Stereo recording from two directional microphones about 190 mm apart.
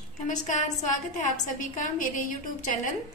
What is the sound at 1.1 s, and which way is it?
A woman's voice, 40° left (ahead or behind).